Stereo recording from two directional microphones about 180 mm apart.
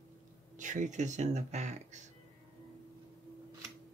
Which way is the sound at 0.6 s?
45° right (ahead or behind).